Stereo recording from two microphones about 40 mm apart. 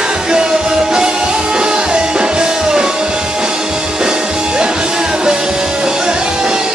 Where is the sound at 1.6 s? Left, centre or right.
Right.